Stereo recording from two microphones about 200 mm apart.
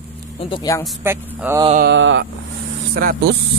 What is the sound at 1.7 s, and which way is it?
Mantra, 60° right (ahead or behind).